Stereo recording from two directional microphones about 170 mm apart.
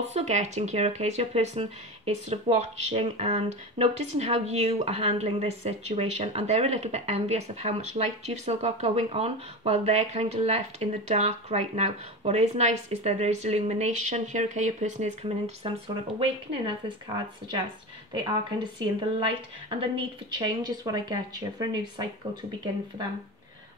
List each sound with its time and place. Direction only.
0.0 s speech: 40° right (ahead or behind)
18.6 s speech: 30° right (ahead or behind)